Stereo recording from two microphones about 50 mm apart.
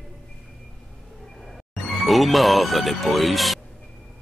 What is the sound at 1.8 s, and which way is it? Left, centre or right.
Speech, centre.